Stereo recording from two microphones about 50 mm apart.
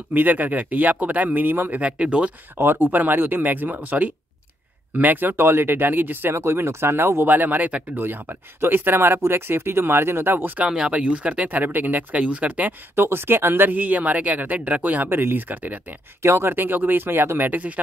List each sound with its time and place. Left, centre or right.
0.1 s speech: right
1.8 s speech: right
2.5 s speech: right
6.3 s speech: right
7.2 s speech: right
10.9 s speech: right
12.9 s speech: right
13.7 s speech: right
15.0 s speech: right
16.2 s speech: right
17.5 s speech: right